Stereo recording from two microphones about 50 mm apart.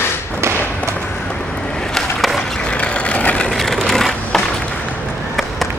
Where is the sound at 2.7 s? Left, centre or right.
Left.